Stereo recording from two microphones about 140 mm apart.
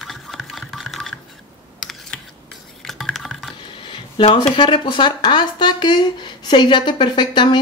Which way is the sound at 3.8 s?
35° left (ahead or behind).